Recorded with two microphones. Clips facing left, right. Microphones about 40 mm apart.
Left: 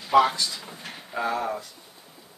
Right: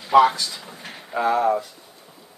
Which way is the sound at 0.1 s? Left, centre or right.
Centre.